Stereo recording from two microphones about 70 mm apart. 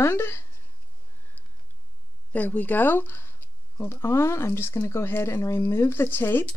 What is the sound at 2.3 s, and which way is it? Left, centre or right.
Speech, left.